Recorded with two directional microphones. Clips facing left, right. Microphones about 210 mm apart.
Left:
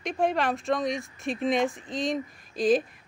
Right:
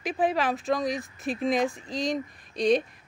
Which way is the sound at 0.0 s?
Centre (ahead or behind).